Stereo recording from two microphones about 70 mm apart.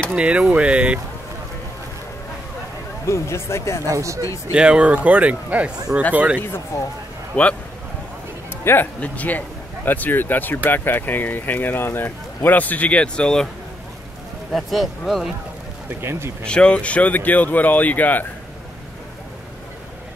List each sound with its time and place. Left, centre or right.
0.1 s speech: centre
3.1 s speech: left
3.8 s speech: right
4.5 s a man's voice: centre
6.7 s speech: left
7.3 s speech: left
8.6 s speech: left
9.0 s speech: left
14.5 s speech: centre
16.0 s speech: right
16.4 s speech: centre